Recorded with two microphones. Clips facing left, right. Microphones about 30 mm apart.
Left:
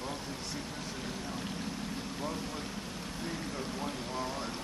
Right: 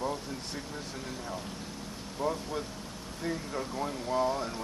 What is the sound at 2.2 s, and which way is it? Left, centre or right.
Speech, right.